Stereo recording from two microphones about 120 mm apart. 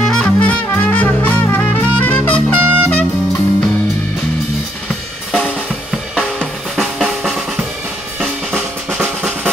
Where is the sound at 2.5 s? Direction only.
15° right (ahead or behind).